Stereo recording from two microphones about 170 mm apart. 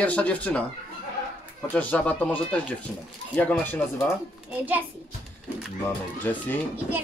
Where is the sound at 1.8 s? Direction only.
10° left (ahead or behind).